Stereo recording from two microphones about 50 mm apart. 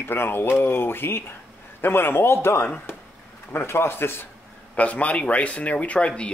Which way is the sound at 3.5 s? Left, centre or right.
Left.